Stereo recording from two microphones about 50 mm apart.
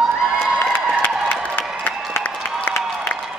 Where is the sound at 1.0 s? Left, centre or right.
Left.